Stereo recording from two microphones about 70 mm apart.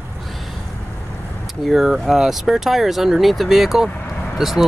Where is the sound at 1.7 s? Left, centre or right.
Centre.